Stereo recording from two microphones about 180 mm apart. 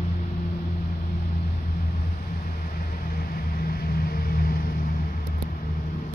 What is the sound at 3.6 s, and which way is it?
Vehicle, 55° left (ahead or behind).